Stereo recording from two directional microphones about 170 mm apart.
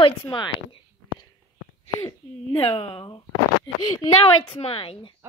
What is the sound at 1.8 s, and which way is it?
Speech, 25° left (ahead or behind).